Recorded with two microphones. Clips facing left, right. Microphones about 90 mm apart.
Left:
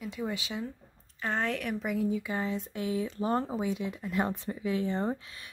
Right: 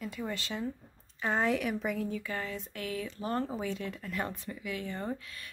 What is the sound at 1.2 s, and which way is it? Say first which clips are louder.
Speech: right 2 dB; 5° right (ahead or behind).